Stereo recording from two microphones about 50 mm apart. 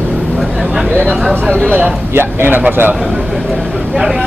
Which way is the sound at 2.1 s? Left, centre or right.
Right.